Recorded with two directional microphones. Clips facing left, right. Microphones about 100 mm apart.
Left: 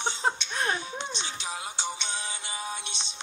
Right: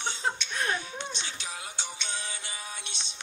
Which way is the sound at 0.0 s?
20° left (ahead or behind).